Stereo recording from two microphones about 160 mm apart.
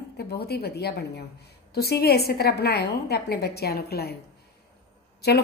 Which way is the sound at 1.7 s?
80° left.